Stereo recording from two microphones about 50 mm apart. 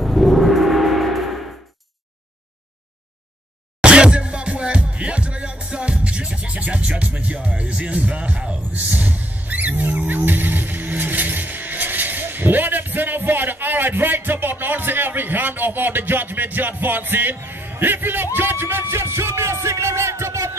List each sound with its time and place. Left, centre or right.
0.0 s music: centre
3.8 s music: right
17.4 s speech: right